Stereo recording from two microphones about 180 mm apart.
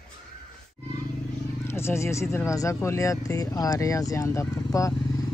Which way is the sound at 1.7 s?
15° left (ahead or behind).